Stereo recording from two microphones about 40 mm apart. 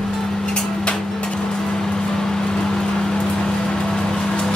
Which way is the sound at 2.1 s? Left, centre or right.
Centre.